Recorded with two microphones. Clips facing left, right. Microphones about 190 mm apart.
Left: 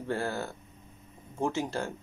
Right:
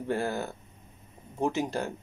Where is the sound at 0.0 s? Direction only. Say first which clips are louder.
Right 2 dB; 15° right (ahead or behind).